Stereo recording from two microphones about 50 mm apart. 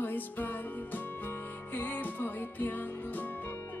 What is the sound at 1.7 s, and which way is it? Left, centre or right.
Music, left.